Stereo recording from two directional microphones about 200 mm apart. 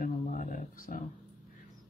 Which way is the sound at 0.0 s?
40° left (ahead or behind).